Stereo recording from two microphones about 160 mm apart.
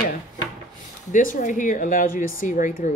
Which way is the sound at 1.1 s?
55° left (ahead or behind).